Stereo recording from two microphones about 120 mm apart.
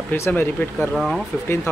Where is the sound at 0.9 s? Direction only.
Centre (ahead or behind).